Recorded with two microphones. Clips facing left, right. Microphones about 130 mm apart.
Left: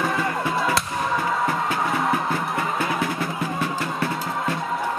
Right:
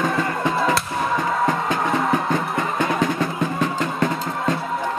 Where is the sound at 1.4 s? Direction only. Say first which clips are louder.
Right 2 dB; 20° right (ahead or behind).